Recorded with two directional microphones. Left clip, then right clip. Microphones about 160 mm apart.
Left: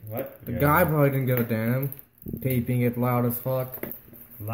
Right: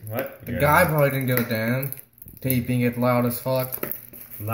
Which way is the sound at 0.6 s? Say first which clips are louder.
Right 3 dB; 40° left (ahead or behind).